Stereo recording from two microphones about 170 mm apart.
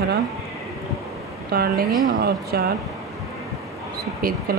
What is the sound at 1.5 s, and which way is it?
Speech, 65° right (ahead or behind).